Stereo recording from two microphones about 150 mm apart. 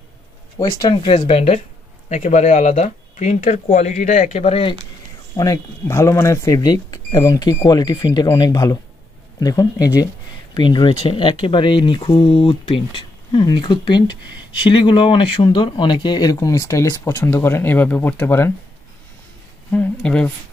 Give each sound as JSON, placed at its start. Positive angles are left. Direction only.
{"t": 0.7, "sound": "speech", "side_deg": 30}
{"t": 1.1, "sound": "speech", "side_deg": 45}
{"t": 2.0, "sound": "speech", "side_deg": 55}
{"t": 5.3, "sound": "speech", "side_deg": 25}
{"t": 19.7, "sound": "speech", "side_deg": 10}